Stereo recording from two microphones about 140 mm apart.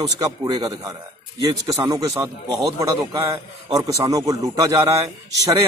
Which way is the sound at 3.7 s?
25° right (ahead or behind).